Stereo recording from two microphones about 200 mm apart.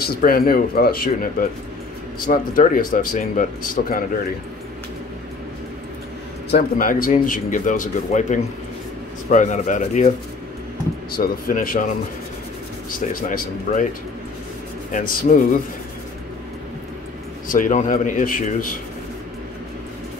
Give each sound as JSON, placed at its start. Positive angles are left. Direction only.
{"t": 0.0, "sound": "a man's voice", "side_deg": 50}
{"t": 6.5, "sound": "speech", "side_deg": 45}
{"t": 11.1, "sound": "a man's voice", "side_deg": 45}
{"t": 13.3, "sound": "a man's voice", "side_deg": 45}
{"t": 14.9, "sound": "speech", "side_deg": 40}
{"t": 17.5, "sound": "a man's voice", "side_deg": 40}